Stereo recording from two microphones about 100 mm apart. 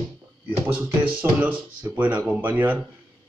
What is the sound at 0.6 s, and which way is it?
Speech, 15° right (ahead or behind).